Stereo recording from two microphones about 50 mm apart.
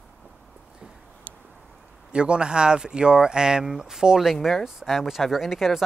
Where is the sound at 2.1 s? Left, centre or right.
Right.